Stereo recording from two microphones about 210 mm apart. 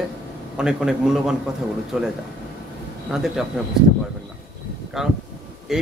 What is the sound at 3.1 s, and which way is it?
Speech, centre (ahead or behind).